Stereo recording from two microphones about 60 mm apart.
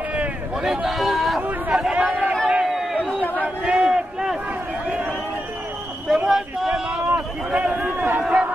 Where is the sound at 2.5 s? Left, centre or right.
Centre.